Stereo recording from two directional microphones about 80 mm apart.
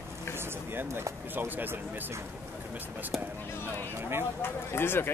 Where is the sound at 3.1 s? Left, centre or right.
Centre.